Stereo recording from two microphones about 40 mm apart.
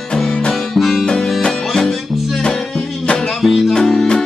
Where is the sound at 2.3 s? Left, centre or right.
Left.